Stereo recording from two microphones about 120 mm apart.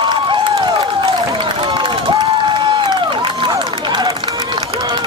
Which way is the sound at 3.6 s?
40° right (ahead or behind).